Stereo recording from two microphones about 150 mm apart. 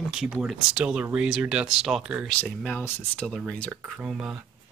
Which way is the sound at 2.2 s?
5° left (ahead or behind).